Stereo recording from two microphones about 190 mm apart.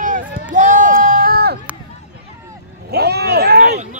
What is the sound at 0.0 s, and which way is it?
Run, 40° right (ahead or behind).